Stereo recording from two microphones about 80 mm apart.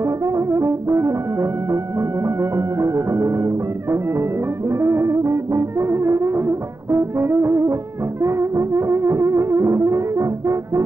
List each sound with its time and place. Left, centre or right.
0.0 s brass instrument: right
8.2 s music: right